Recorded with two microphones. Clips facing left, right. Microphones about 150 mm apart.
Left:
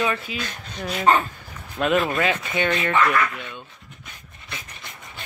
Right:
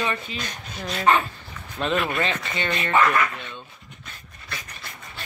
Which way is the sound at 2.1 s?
10° left (ahead or behind).